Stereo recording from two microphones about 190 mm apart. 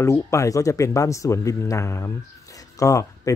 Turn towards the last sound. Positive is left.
turn(degrees=15)  # may be behind; listen again after turning